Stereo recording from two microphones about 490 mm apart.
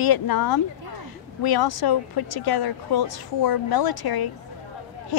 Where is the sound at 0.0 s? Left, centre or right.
Left.